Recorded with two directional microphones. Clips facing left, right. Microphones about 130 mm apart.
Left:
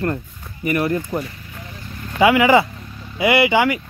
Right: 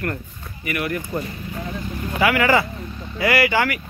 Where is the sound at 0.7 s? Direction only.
30° left (ahead or behind).